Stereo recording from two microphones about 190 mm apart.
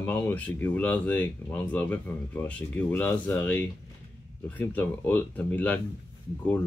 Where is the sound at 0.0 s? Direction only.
10° left (ahead or behind).